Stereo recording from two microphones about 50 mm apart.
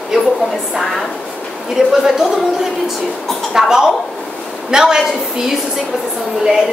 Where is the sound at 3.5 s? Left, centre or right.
Centre.